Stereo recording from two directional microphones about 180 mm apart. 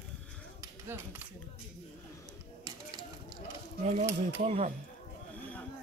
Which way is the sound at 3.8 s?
40° right (ahead or behind).